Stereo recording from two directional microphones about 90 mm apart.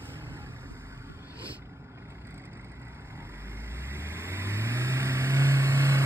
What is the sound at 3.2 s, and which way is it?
Vehicle, 25° right (ahead or behind).